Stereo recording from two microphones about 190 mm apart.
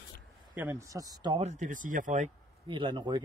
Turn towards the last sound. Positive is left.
turn(degrees=-25)  # may be behind; listen again after turning